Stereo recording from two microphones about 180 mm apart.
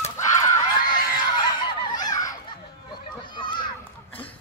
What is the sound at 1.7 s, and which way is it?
Honk, 25° left (ahead or behind).